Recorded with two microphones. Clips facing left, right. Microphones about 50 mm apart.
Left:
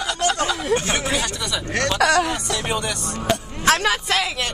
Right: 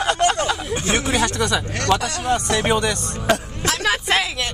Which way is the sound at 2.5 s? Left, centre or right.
Right.